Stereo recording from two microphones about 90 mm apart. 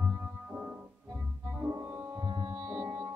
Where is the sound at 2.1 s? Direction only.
50° right (ahead or behind).